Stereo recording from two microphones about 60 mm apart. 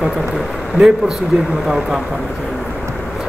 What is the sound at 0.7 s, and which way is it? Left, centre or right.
Speech, centre.